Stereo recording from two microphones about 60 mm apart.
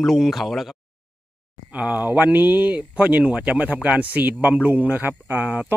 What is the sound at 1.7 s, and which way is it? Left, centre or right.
Speech, right.